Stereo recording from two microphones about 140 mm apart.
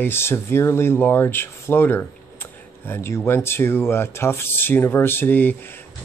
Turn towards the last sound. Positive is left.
turn(degrees=15)  # may be behind; listen again after turning